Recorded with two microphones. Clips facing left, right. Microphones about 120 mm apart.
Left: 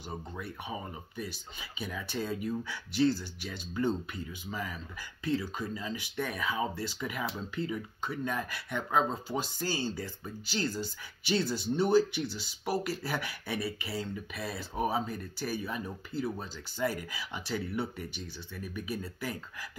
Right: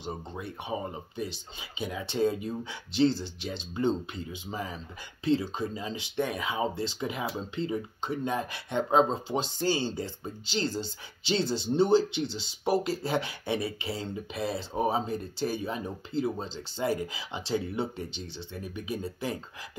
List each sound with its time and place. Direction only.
0.0 s speech: 25° right (ahead or behind)